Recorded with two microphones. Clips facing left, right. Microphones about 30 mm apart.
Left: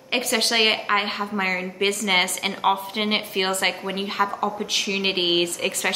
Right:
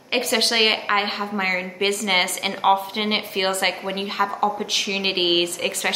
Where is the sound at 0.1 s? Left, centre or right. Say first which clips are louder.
Right 1 dB; centre.